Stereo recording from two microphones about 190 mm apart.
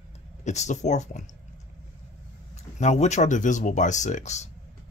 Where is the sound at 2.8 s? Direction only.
35° left (ahead or behind).